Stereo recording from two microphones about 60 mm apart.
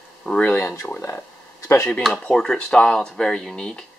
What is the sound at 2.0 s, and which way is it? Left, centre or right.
Speech, centre.